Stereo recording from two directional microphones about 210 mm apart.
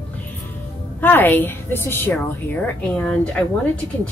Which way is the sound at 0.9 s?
10° left (ahead or behind).